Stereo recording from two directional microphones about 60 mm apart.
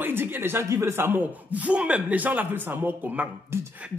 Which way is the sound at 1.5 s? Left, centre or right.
Right.